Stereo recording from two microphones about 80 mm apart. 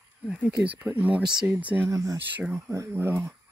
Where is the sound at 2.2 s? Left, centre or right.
Right.